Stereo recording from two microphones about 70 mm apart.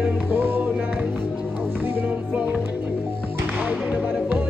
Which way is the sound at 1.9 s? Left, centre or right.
Right.